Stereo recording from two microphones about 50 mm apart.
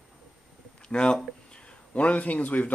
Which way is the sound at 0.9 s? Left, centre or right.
Centre.